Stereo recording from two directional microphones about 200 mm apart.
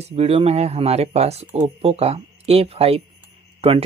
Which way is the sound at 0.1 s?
30° right (ahead or behind).